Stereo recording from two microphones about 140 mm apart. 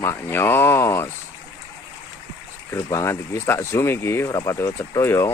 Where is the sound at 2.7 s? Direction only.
20° left (ahead or behind).